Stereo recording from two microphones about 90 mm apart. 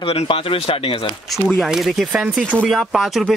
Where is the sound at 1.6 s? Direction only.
Centre (ahead or behind).